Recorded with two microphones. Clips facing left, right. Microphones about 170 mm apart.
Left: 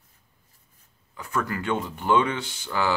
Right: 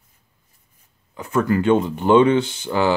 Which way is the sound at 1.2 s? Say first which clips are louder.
Right 10 dB; 25° right (ahead or behind).